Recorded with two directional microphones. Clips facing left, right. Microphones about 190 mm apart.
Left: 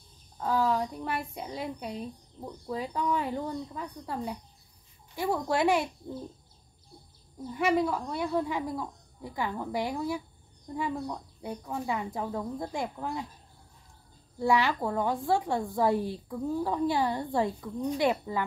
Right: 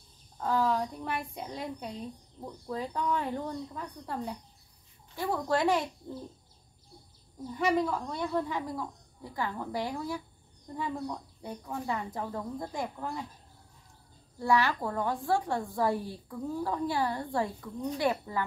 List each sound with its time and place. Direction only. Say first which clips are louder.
0.4 s a woman's voice: left 1 dB; 5° left (ahead or behind)
7.5 s speech: left 2 dB; 5° left (ahead or behind)
14.4 s a woman's voice: left 1 dB; 15° left (ahead or behind)